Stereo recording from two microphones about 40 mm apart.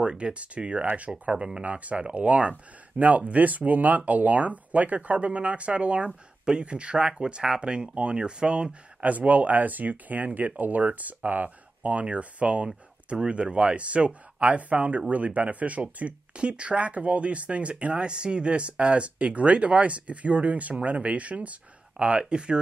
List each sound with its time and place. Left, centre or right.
0.0 s speech: right
1.3 s speech: right
1.6 s speech: right
9.0 s speech: right